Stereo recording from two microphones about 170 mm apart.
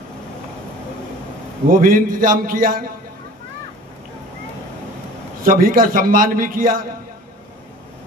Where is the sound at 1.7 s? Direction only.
55° right (ahead or behind).